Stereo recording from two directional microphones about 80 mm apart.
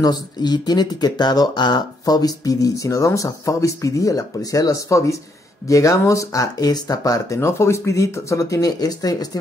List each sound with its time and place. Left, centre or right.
0.0 s speech: left
7.3 s speech: left